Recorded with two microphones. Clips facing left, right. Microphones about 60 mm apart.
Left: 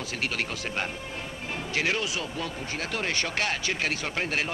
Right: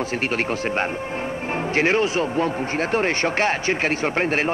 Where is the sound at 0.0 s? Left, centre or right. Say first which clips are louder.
Right 8 dB; right.